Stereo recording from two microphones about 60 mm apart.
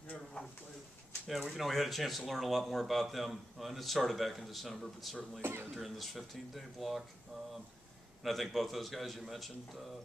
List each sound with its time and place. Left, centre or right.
0.1 s a sound: centre
1.2 s speech: centre
5.4 s speech: right
5.8 s speech: centre
8.2 s speech: centre